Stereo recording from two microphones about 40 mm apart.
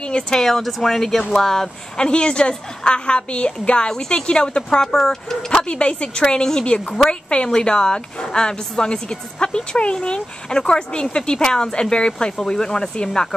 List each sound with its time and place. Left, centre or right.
0.0 s speech: left
0.4 s speech: centre
2.0 s a woman's voice: left
5.7 s a woman's voice: left